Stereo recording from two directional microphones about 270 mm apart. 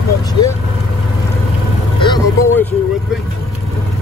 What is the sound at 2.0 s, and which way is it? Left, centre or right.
Speech, centre.